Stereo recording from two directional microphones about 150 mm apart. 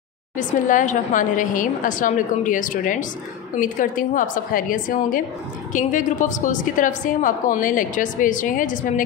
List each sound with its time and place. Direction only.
0.4 s a woman's voice: 60° left (ahead or behind)